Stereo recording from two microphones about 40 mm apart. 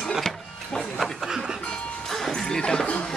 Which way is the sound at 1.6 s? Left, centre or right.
Left.